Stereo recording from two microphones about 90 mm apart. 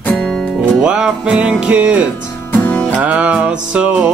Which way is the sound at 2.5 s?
15° left (ahead or behind).